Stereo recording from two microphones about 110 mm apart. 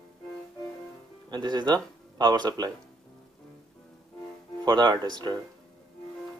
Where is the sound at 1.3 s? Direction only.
40° right (ahead or behind).